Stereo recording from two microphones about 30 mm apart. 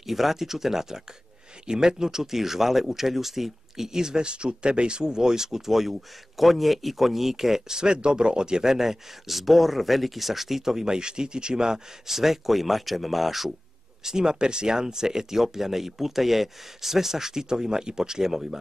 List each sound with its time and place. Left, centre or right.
0.0 s speech: centre
9.3 s speech: centre; by 11.8 s right
12.1 s speech: centre
14.0 s speech: right